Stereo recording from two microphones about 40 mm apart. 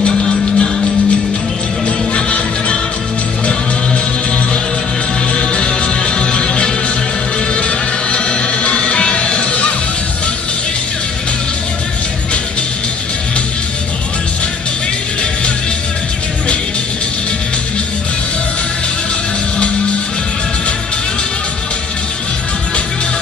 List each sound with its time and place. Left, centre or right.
0.1 s music: centre
2.1 s music: left
5.3 s music: left